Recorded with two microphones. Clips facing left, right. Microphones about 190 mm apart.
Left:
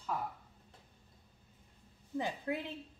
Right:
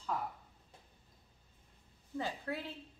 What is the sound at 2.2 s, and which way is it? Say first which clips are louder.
Speech: left 3 dB; 15° left (ahead or behind).